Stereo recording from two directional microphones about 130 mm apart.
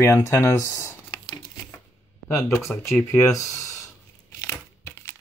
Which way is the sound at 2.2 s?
20° left (ahead or behind).